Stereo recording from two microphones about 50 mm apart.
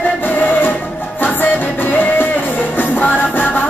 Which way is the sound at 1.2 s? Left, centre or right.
Left.